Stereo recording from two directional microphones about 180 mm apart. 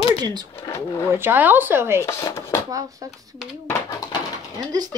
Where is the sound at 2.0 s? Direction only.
15° left (ahead or behind).